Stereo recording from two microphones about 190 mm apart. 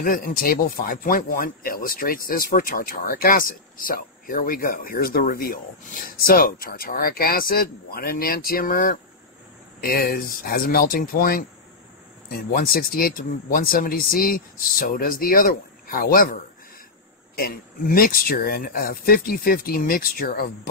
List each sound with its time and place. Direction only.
0.0 s speech: 45° left (ahead or behind)
17.4 s speech: 50° left (ahead or behind)